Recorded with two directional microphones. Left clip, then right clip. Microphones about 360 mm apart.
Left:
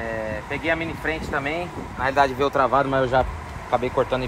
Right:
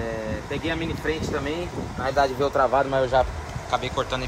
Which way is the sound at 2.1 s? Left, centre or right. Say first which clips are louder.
Left 2 dB; left.